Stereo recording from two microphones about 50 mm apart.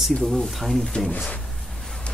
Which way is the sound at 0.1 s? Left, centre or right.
Centre.